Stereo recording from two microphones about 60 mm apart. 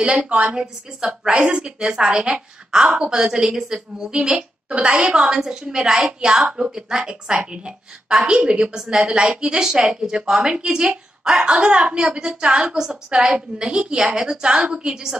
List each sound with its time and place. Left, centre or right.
0.0 s a woman's voice: centre
6.5 s a woman's voice: centre